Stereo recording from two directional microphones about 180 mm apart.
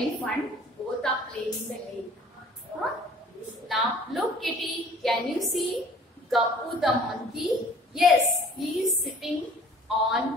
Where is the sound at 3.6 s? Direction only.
Centre (ahead or behind).